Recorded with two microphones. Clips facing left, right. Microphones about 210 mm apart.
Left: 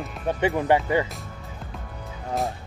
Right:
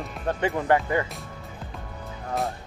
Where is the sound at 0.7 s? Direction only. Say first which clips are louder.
Left 1 dB; 20° left (ahead or behind).